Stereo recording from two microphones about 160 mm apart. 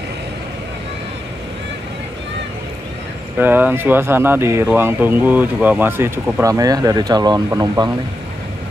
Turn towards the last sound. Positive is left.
turn(degrees=-25)  # may be behind; listen again after turning